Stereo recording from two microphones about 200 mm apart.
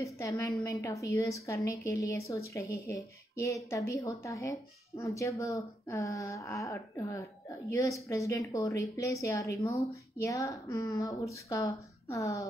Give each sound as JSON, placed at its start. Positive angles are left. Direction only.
{"t": 0.0, "sound": "a woman's voice", "side_deg": 15}